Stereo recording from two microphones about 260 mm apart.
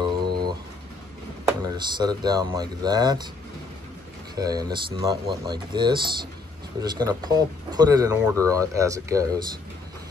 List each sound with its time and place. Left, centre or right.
0.1 s a sound: centre
1.6 s speech: centre
4.4 s speech: centre